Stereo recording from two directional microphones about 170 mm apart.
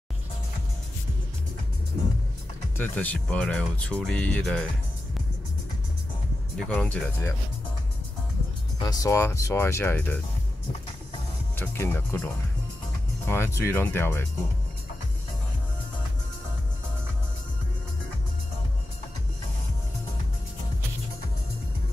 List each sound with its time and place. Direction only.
2.8 s speech: 10° left (ahead or behind)
6.5 s speech: 5° left (ahead or behind)
8.7 s speech: 20° left (ahead or behind)
11.5 s speech: 10° left (ahead or behind)
13.3 s speech: 15° left (ahead or behind)